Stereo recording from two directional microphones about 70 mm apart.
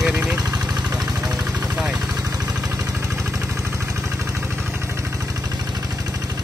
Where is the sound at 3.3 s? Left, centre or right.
Right.